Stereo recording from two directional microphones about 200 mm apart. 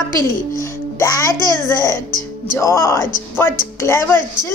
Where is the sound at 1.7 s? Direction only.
15° left (ahead or behind).